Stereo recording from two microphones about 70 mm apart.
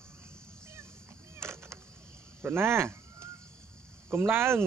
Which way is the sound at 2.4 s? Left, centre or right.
Right.